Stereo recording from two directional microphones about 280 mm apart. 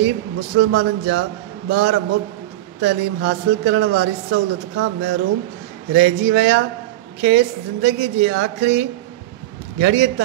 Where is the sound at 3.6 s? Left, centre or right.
Right.